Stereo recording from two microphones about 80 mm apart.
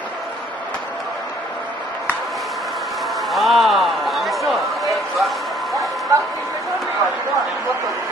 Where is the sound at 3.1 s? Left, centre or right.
Centre.